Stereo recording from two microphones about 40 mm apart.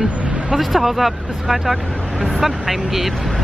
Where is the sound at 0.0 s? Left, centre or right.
Right.